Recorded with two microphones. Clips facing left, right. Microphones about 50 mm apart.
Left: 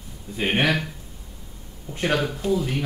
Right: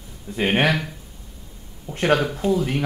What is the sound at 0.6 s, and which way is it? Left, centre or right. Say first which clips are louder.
Speech: right 2 dB; centre.